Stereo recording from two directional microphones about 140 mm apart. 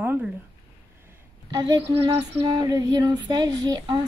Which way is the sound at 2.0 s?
45° right (ahead or behind).